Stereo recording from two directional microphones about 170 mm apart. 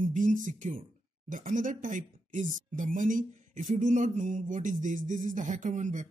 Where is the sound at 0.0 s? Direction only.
50° right (ahead or behind).